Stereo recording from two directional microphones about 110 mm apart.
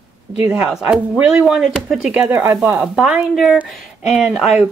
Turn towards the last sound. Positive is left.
turn(degrees=-5)  # may be behind; listen again after turning